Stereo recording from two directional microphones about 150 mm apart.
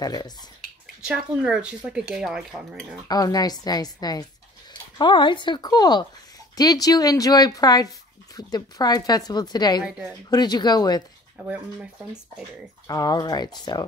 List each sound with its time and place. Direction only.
0.0 s speech: 25° left (ahead or behind)
1.0 s speech: 5° right (ahead or behind)
3.1 s speech: 25° left (ahead or behind)
9.8 s speech: 10° right (ahead or behind)
10.3 s speech: 30° left (ahead or behind)
11.4 s speech: 10° right (ahead or behind)
12.8 s speech: 25° left (ahead or behind)